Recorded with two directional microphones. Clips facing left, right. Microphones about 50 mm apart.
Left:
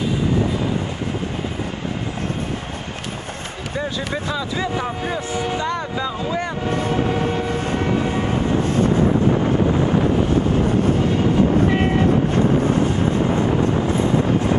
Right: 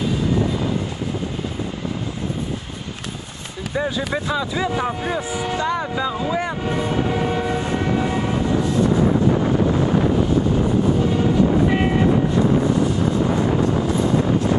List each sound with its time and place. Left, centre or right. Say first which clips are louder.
3.7 s speech: right 3 dB; centre
7.2 s train: even; centre